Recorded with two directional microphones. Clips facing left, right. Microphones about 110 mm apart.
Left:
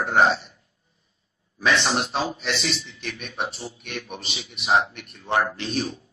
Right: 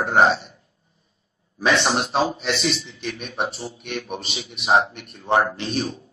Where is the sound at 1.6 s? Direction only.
25° right (ahead or behind).